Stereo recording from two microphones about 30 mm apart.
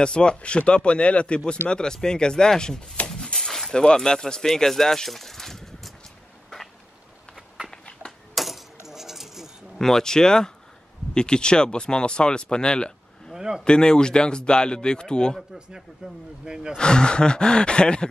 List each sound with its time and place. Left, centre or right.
0.0 s speech: left
1.4 s speech: left
4.5 s speech: centre
8.4 s keys jangling: centre
9.8 s speech: centre
16.0 s speech: right
16.7 s speech: left